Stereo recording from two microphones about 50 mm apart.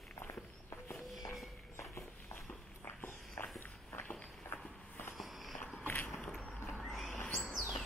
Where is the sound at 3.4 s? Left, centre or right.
Left.